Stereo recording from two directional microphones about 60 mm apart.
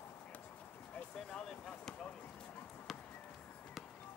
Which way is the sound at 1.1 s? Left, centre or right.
Centre.